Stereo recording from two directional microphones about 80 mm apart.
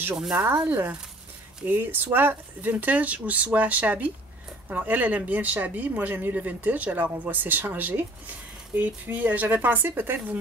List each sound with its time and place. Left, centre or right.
0.3 s speech: right